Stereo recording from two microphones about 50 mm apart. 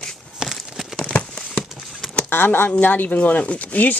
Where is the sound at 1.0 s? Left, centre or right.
Left.